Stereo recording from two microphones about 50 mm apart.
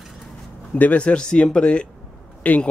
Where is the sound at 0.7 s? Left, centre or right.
Left.